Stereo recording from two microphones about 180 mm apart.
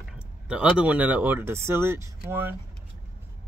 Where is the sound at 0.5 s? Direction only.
5° right (ahead or behind).